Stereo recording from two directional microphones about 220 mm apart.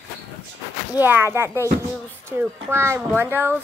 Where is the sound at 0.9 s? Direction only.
10° right (ahead or behind).